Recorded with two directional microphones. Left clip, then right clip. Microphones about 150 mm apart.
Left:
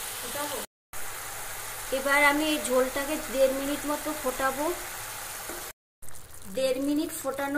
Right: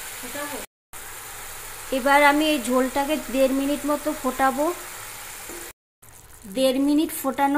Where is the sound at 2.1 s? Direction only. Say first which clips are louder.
Right 6 dB; 40° right (ahead or behind).